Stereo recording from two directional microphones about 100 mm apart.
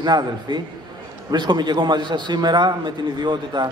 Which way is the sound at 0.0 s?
50° right (ahead or behind).